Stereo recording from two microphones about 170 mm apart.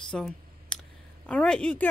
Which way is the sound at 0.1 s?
5° left (ahead or behind).